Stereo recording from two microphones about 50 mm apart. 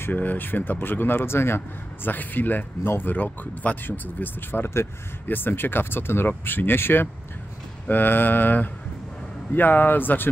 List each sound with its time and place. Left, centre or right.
0.1 s speech: left
2.0 s speech: left